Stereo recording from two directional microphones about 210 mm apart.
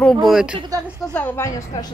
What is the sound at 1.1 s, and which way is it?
Speech, 10° left (ahead or behind).